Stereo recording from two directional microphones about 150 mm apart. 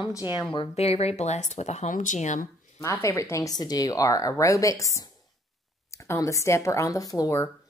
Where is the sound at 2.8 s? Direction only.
20° left (ahead or behind).